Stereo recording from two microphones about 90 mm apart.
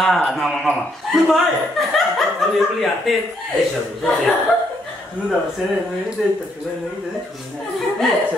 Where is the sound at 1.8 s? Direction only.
Centre (ahead or behind).